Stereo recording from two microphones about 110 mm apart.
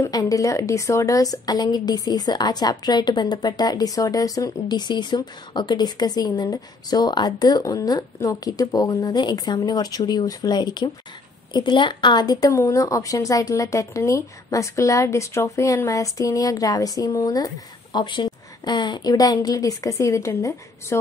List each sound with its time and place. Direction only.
0.0 s a woman's voice: 30° left (ahead or behind)
17.9 s a woman's voice: 45° left (ahead or behind); by 21.0 s 30° left (ahead or behind)